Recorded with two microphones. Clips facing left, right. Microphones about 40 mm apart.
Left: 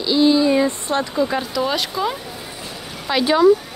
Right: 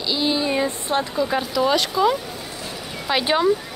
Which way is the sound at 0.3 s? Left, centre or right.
Centre.